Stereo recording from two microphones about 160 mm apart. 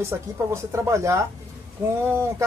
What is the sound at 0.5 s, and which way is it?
A woman's voice, 15° right (ahead or behind).